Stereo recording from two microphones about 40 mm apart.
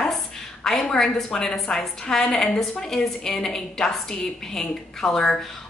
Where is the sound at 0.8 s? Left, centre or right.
Centre.